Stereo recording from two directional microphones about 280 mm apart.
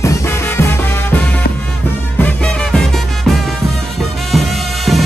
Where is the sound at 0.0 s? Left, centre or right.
Centre.